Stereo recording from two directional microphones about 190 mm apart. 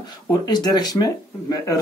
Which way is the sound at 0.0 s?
20° left (ahead or behind).